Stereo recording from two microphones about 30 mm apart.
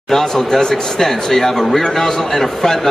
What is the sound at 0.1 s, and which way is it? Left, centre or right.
Speech, left.